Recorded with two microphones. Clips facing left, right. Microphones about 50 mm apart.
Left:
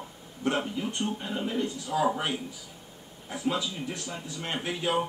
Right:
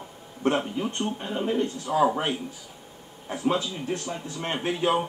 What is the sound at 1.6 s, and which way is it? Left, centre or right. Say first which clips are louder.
Speech: right 4 dB; right.